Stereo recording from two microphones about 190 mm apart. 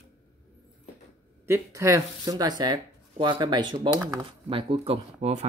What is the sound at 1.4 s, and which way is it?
Speech, 15° right (ahead or behind).